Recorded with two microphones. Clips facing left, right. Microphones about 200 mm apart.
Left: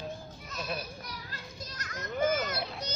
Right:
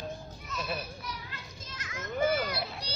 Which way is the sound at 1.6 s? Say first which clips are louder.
Even; 40° left (ahead or behind).